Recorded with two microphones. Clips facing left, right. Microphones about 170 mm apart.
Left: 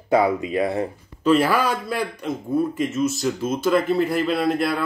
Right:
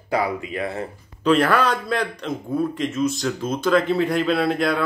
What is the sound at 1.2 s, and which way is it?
A man's voice, 5° left (ahead or behind).